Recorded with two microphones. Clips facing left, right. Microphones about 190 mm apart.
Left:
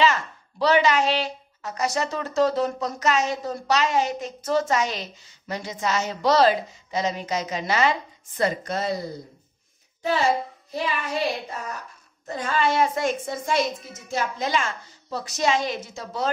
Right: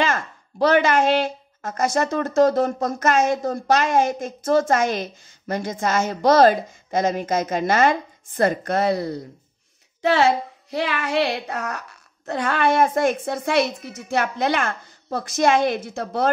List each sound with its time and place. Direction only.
0.0 s a woman's voice: 50° right (ahead or behind)